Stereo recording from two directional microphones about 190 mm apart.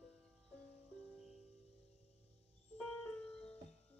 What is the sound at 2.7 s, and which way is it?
Music, 10° left (ahead or behind).